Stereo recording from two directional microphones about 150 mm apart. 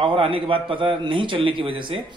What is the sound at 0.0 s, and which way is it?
Speech, 35° right (ahead or behind).